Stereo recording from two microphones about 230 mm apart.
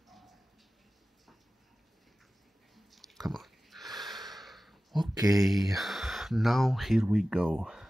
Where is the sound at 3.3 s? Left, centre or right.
Centre.